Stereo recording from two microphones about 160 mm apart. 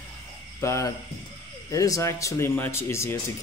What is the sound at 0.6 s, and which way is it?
Speech, 20° left (ahead or behind).